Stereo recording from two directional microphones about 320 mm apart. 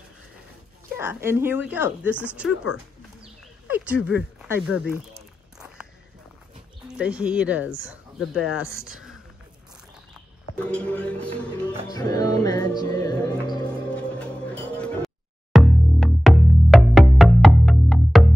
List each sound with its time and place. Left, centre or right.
1.0 s speech: centre
3.2 s a sound: centre
4.9 s walk: centre
6.9 s speech: centre
10.7 s speech: centre
11.9 s music: centre